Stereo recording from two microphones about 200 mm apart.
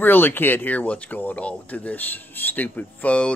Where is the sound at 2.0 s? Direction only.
10° left (ahead or behind).